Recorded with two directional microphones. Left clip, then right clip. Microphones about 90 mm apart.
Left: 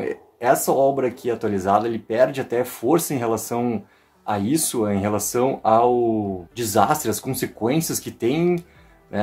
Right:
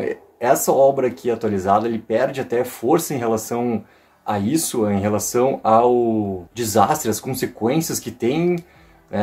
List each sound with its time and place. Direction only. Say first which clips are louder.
0.0 s speech: right 1 dB; 30° left (ahead or behind)